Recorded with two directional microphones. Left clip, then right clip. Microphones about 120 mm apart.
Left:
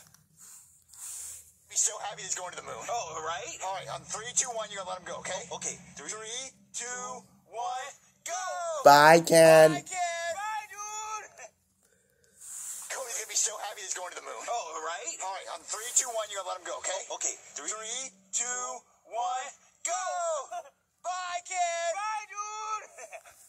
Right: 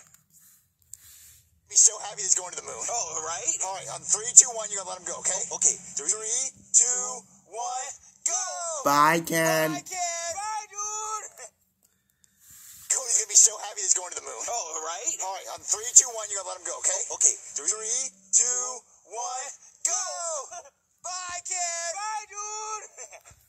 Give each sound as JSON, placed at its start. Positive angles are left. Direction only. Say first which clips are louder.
{"t": 1.7, "sound": "speech", "louder": "right 9 dB", "side_deg": -25}
{"t": 8.8, "sound": "speech", "louder": "left 4 dB", "side_deg": 10}
{"t": 9.7, "sound": "child singing", "louder": "left 2 dB", "side_deg": -30}
{"t": 12.8, "sound": "a sound", "louder": "right 9 dB", "side_deg": -35}
{"t": 15.9, "sound": "speech", "louder": "right 8 dB", "side_deg": -25}